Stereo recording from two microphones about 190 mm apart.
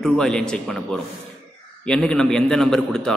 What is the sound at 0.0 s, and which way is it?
Speech, 5° left (ahead or behind).